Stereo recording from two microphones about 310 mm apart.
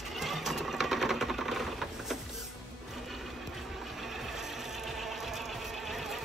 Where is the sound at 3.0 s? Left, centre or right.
Centre.